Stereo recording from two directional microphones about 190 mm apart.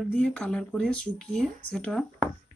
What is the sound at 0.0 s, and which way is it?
Speech, 5° left (ahead or behind).